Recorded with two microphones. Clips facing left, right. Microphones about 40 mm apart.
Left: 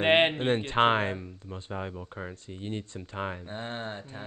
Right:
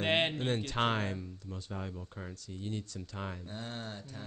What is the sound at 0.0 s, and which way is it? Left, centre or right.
Speech, left.